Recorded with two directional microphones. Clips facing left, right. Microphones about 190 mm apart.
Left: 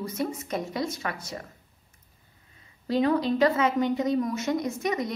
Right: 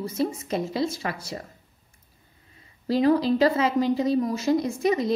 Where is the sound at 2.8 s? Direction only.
35° right (ahead or behind).